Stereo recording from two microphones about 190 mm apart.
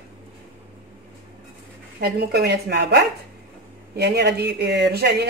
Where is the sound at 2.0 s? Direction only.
60° right (ahead or behind).